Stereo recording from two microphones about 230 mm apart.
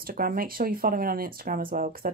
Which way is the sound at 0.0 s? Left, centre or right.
Right.